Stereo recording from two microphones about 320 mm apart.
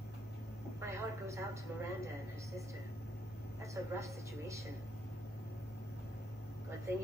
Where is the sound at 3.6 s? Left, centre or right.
Centre.